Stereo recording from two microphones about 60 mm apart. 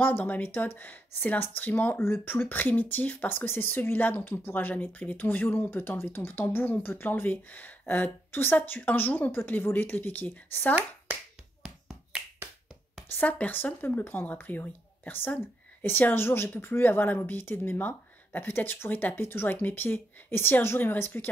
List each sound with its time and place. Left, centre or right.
0.0 s speech: left
10.7 s speech: right
11.6 s finger snapping: centre
13.1 s speech: left